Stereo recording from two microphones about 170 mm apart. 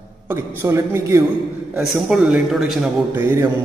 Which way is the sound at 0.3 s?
15° right (ahead or behind).